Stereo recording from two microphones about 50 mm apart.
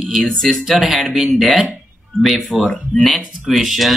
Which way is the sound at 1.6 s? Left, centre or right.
Centre.